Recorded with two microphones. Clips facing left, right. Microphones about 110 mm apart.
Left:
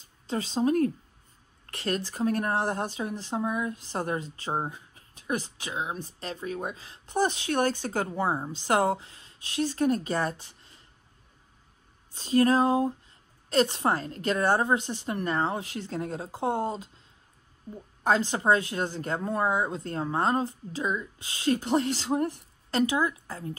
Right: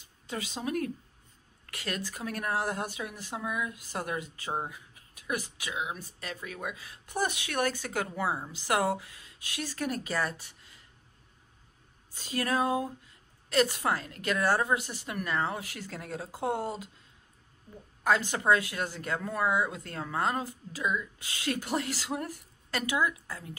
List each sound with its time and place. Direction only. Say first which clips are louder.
0.3 s a woman's voice: left 8 dB; 35° left (ahead or behind)
12.2 s a woman's voice: left 8 dB; 30° left (ahead or behind)
16.3 s speech: left 2 dB; 20° left (ahead or behind)
18.0 s a woman's voice: left 2 dB; 30° left (ahead or behind)